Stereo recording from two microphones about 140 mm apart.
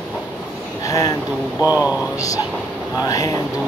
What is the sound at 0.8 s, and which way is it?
Speech, 25° left (ahead or behind).